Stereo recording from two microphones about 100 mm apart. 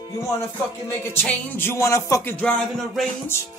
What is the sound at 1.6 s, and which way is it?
Speech, 30° left (ahead or behind).